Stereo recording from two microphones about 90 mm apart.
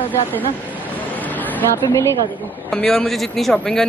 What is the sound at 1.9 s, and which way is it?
Speech, 30° left (ahead or behind).